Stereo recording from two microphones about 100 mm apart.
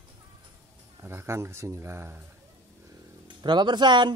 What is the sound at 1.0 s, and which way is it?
Speech, 25° right (ahead or behind).